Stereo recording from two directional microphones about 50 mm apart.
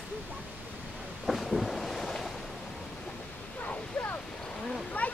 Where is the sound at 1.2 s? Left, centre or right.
Centre.